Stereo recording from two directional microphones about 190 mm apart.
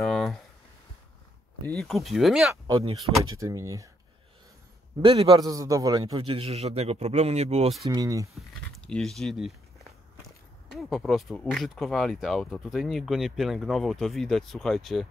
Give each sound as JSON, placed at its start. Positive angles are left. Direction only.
{"t": 0.0, "sound": "a sound", "side_deg": 0}
{"t": 1.7, "sound": "speech", "side_deg": 0}
{"t": 2.5, "sound": "speech", "side_deg": -20}
{"t": 5.0, "sound": "a man's voice", "side_deg": -25}
{"t": 7.9, "sound": "speech", "side_deg": -15}
{"t": 8.4, "sound": "walk", "side_deg": 0}
{"t": 10.7, "sound": "speech", "side_deg": 0}